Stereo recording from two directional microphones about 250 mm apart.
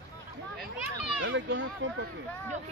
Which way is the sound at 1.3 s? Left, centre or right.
Right.